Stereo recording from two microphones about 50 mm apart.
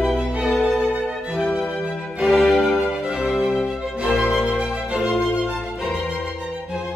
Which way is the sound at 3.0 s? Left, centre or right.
Centre.